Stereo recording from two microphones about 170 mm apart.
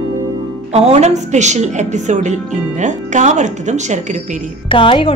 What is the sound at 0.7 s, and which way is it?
A woman's voice, 40° right (ahead or behind).